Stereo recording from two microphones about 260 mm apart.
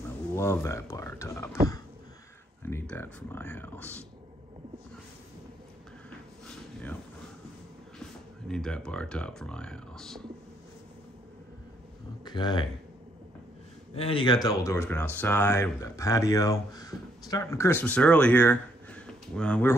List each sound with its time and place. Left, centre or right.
0.4 s speech: centre
2.6 s speech: centre
6.4 s a sound: centre
8.5 s speech: centre
12.3 s speech: centre
13.9 s speech: centre